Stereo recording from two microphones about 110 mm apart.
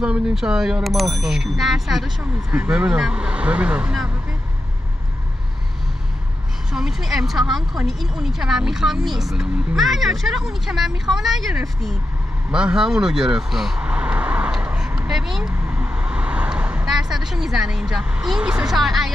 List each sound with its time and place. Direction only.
0.0 s speech: 5° right (ahead or behind)
6.7 s speech: 5° right (ahead or behind)
12.4 s vehicle: 10° right (ahead or behind)